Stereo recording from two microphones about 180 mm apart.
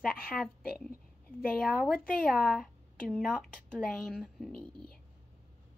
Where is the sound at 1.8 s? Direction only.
Centre (ahead or behind).